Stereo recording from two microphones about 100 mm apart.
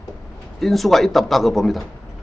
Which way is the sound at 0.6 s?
Centre (ahead or behind).